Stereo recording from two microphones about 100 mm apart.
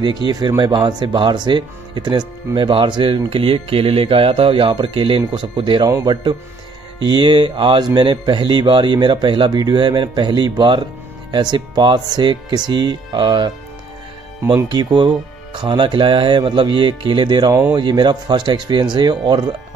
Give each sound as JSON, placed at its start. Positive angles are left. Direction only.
{"t": 0.0, "sound": "speech", "side_deg": -50}
{"t": 7.1, "sound": "speech", "side_deg": -55}
{"t": 14.7, "sound": "speech", "side_deg": -45}